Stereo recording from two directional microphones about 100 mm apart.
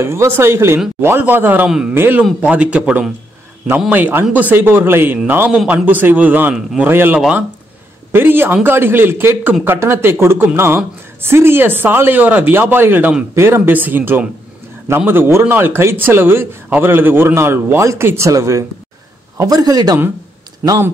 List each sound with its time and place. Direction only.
0.0 s a man's voice: 25° right (ahead or behind)